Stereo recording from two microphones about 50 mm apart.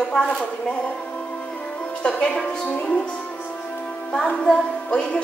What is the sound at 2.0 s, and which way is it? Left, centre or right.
Speech, centre.